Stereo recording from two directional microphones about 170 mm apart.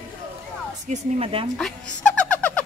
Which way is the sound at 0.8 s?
35° right (ahead or behind).